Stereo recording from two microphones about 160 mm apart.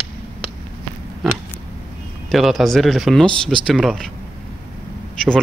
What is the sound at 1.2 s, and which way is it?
Pig, centre (ahead or behind).